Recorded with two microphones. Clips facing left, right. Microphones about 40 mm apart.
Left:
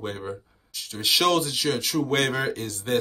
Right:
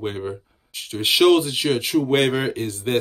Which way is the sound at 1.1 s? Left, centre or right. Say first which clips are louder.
Right 6 dB; right.